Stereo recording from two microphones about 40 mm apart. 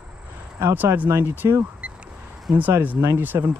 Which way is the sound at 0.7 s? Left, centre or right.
Right.